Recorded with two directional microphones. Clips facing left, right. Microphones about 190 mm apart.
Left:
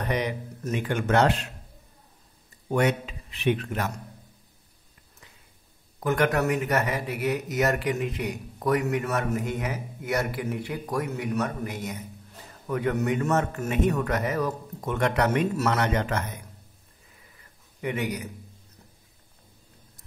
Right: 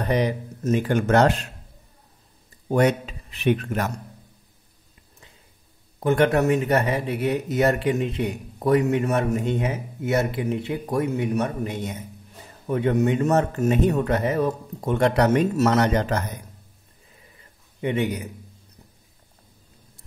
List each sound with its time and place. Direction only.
0.0 s speech: 35° right (ahead or behind)
2.7 s a man's voice: 35° right (ahead or behind)
5.9 s a man's voice: 30° right (ahead or behind)
17.4 s a sound: 25° right (ahead or behind)